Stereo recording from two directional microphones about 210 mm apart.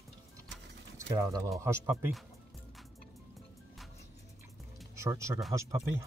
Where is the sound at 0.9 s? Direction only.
15° right (ahead or behind).